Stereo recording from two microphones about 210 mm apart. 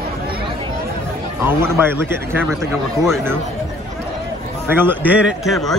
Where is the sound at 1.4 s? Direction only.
10° right (ahead or behind).